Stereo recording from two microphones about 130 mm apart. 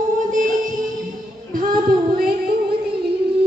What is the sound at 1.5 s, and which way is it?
Child singing, 90° right.